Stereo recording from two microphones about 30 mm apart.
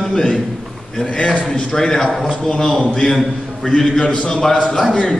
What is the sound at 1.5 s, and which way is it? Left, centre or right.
A man's voice, left.